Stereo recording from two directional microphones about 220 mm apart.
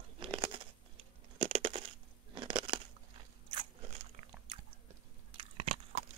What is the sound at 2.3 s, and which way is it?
Crunch, 20° right (ahead or behind).